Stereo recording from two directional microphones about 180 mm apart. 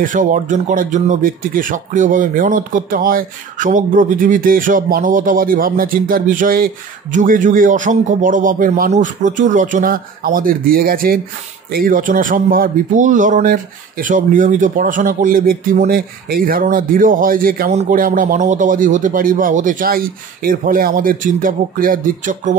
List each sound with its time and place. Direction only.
0.0 s speech: 45° right (ahead or behind)